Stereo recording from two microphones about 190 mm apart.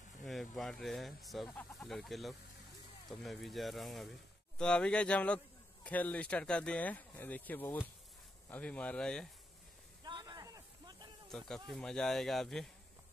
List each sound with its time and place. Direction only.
0.2 s speech: centre (ahead or behind)
10.0 s a sound: 20° right (ahead or behind)
11.3 s speech: 5° left (ahead or behind)